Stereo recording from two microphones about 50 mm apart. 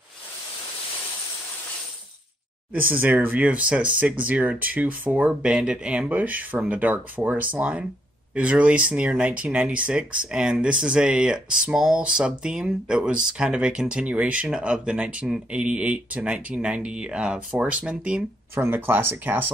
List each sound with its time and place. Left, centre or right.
2.8 s speech: right
3.4 s speech: right
5.4 s speech: centre
18.7 s speech: right